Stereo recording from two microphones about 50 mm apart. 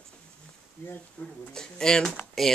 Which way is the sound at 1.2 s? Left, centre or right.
Left.